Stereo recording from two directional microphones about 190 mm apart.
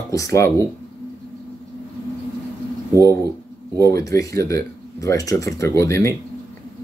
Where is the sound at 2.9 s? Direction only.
15° left (ahead or behind).